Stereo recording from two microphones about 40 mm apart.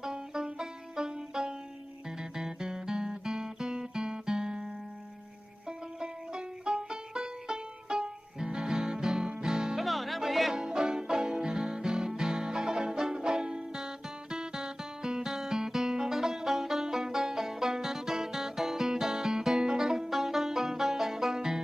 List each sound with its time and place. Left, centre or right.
0.0 s music: centre
5.7 s music: centre
9.8 s music: centre
10.5 s music: centre